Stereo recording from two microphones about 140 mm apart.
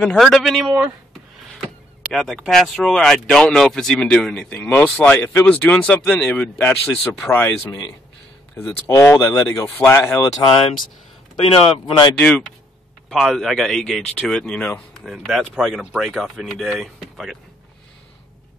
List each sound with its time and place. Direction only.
0.0 s speech: 5° left (ahead or behind); by 10.6 s 30° left (ahead or behind)
11.4 s speech: 40° left (ahead or behind)
12.2 s speech: 10° left (ahead or behind)